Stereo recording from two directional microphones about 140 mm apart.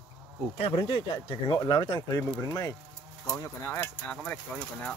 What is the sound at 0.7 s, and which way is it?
Speech, 35° left (ahead or behind).